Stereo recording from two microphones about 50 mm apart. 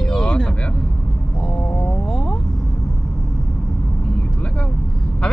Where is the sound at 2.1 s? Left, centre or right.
Centre.